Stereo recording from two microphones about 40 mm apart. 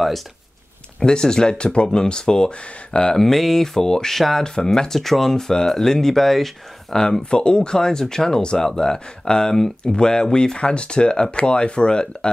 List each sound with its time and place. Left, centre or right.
0.9 s speech: centre
3.2 s speech: centre
7.0 s speech: centre